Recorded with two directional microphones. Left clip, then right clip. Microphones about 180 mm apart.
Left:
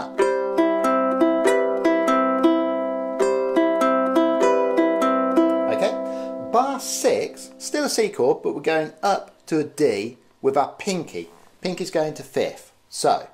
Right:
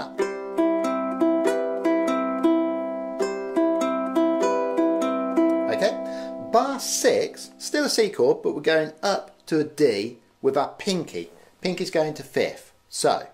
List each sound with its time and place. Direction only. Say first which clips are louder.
0.2 s music: left 5 dB; 30° left (ahead or behind)
5.7 s music: left 1 dB; centre (ahead or behind)
6.5 s speech: left 1 dB; centre (ahead or behind)